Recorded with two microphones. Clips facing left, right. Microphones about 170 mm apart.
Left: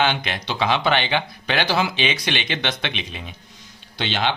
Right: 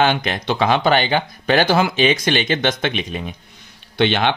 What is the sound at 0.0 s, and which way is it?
Speech, 45° right (ahead or behind).